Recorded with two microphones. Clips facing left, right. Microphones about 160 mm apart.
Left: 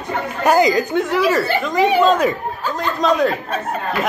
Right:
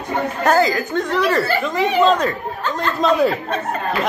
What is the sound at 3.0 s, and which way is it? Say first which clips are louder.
Speech: right 1 dB; centre (ahead or behind).